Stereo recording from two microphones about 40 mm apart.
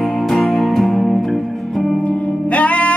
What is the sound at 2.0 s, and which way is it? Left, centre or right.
Music, left.